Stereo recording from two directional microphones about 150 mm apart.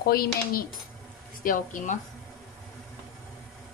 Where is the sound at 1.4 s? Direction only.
60° left (ahead or behind).